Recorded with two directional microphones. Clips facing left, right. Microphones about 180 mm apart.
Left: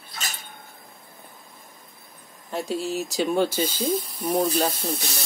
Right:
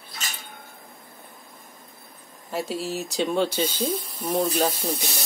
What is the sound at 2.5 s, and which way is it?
Speech, centre (ahead or behind).